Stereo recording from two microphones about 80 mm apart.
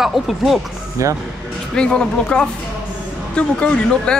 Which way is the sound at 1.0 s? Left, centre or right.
Right.